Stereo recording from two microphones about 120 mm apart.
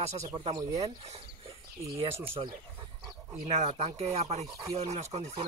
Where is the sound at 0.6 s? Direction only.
30° right (ahead or behind).